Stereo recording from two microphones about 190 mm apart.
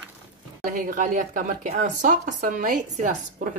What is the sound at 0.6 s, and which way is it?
Speech, 45° right (ahead or behind).